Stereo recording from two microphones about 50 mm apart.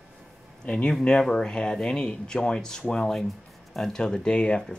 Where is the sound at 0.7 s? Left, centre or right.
Centre.